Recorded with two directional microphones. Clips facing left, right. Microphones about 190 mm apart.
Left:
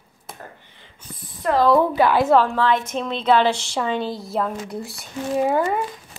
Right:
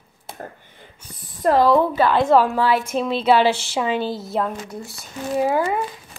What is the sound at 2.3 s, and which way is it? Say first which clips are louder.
A woman's voice: right 1 dB; 10° right (ahead or behind).